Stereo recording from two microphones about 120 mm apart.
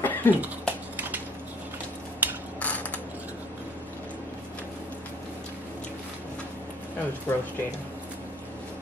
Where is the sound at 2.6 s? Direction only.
15° left (ahead or behind).